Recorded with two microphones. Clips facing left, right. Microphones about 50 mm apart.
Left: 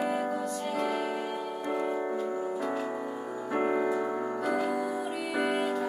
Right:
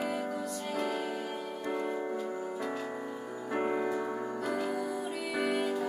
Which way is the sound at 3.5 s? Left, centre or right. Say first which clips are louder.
Left 4 dB; centre.